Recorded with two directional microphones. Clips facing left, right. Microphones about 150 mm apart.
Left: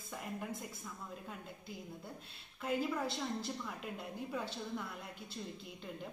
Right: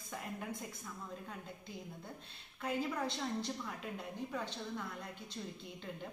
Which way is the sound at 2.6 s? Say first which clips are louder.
Left 1 dB; 5° left (ahead or behind).